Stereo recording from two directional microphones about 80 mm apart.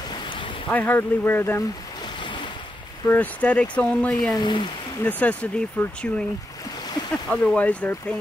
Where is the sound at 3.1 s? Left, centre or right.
Centre.